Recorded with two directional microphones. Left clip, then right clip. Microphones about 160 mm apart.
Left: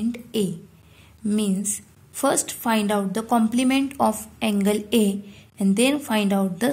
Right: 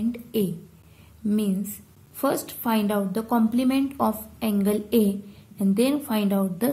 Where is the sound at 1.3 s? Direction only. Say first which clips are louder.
Left 2 dB; 25° left (ahead or behind).